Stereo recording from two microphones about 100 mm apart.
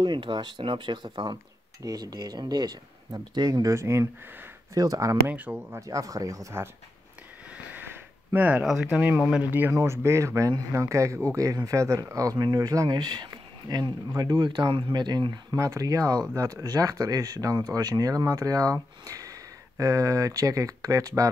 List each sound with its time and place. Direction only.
0.0 s speech: 50° right (ahead or behind)
1.8 s speech: 35° right (ahead or behind)
5.3 s speech: 15° right (ahead or behind)
5.8 s speech: 35° right (ahead or behind)
7.5 s a sound: 20° right (ahead or behind)
8.6 s speech: 5° right (ahead or behind); by 21.3 s 35° right (ahead or behind)